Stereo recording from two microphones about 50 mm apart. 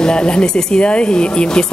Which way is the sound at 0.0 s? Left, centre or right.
Centre.